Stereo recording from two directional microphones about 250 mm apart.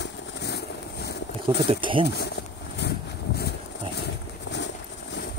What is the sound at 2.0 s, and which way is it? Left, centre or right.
Speech, left.